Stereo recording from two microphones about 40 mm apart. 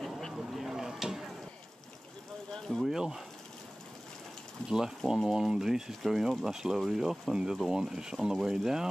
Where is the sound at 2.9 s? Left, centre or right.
Centre.